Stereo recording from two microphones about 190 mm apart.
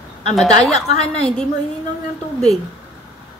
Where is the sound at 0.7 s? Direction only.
35° left (ahead or behind).